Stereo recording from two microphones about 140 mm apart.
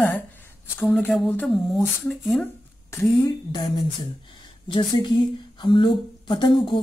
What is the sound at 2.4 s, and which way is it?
A woman's voice, 20° left (ahead or behind).